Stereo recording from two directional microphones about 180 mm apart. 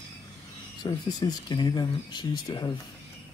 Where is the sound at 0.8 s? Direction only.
20° left (ahead or behind).